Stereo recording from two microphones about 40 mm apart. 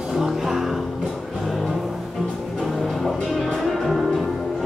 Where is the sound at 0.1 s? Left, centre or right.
Centre.